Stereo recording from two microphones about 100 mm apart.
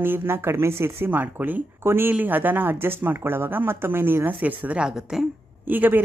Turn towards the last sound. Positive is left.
turn(degrees=-20)  # may be behind; listen again after turning